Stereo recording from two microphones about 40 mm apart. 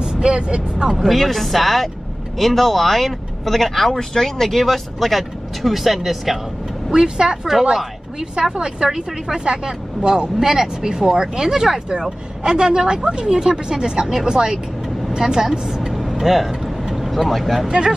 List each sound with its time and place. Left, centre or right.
0.0 s speech: right
0.8 s speech: centre
6.9 s speech: centre
15.9 s vehicle: centre
16.9 s speech: centre
17.6 s speech: centre